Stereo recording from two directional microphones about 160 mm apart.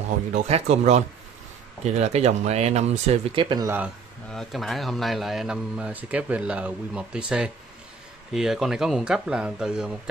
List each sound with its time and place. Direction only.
0.3 s speech: 45° right (ahead or behind); by 3.7 s 25° right (ahead or behind)
4.3 s speech: centre (ahead or behind)